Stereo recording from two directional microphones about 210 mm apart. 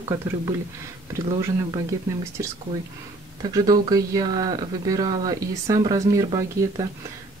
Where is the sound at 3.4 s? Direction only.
20° right (ahead or behind).